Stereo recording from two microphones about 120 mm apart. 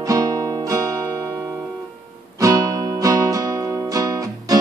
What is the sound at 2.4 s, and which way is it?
Music, 30° right (ahead or behind).